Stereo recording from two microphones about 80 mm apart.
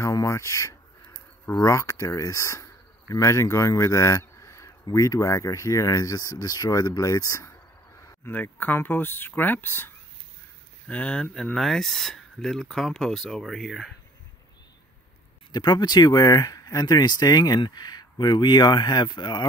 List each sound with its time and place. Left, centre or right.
0.0 s speech: left
1.0 s a sound: left
1.6 s speech: left
8.3 s speech: left
10.9 s speech: centre
11.5 s speech: centre
15.5 s speech: left